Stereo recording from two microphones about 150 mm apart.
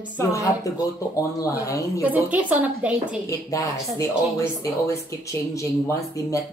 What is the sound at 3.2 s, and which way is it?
Speech, 20° left (ahead or behind).